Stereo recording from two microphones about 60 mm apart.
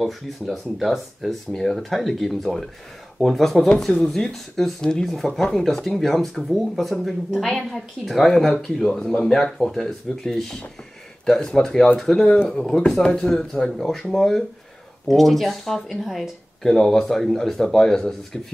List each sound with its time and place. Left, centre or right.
0.0 s speech: centre
3.5 s speech: centre
3.8 s speech: centre